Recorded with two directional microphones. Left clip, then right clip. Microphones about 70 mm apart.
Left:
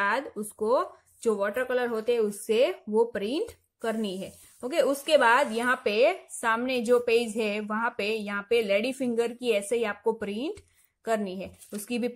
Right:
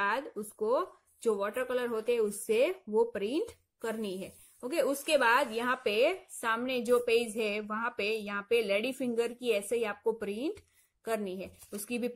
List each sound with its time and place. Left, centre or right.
0.0 s speech: centre
1.3 s a woman's voice: centre
2.9 s a woman's voice: centre
3.9 s a woman's voice: right